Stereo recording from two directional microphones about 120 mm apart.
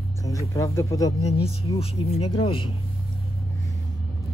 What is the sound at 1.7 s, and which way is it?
Speech, 60° left (ahead or behind).